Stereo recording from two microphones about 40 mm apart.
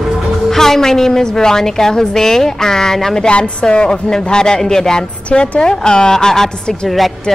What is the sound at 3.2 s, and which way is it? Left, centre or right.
A woman's voice, left.